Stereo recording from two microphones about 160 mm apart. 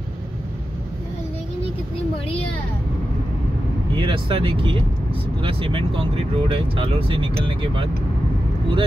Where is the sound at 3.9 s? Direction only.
30° right (ahead or behind).